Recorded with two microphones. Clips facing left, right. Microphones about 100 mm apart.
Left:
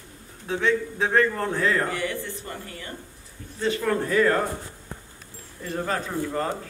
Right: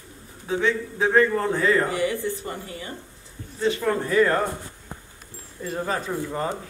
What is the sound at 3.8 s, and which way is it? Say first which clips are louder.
Speech: even; 5° right (ahead or behind).